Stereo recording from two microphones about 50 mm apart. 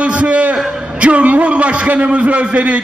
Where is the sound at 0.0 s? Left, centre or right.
Right.